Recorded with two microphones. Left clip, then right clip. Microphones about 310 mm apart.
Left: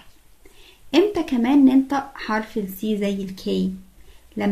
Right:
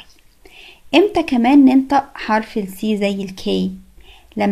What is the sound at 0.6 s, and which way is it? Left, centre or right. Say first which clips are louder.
Speech: right 5 dB; centre.